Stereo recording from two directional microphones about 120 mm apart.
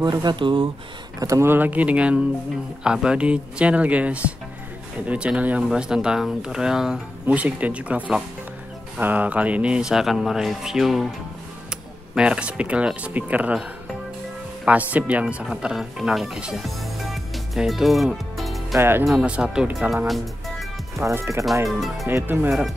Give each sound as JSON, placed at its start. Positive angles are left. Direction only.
{"t": 0.0, "sound": "speech", "side_deg": -35}
{"t": 1.2, "sound": "speech", "side_deg": -25}
{"t": 18.8, "sound": "speech", "side_deg": -20}
{"t": 19.0, "sound": "speech", "side_deg": -5}
{"t": 21.0, "sound": "speech", "side_deg": -20}
{"t": 21.6, "sound": "speech", "side_deg": 0}
{"t": 22.0, "sound": "speech", "side_deg": -20}